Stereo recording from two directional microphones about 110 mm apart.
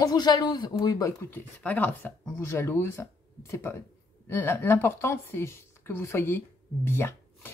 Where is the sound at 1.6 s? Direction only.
15° left (ahead or behind).